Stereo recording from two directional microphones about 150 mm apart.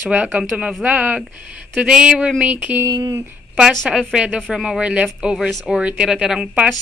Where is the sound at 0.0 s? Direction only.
5° right (ahead or behind).